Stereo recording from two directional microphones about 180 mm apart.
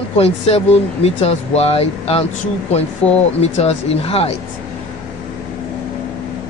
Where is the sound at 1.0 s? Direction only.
35° left (ahead or behind).